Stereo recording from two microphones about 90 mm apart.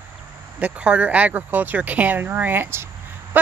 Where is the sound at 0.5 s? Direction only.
15° right (ahead or behind).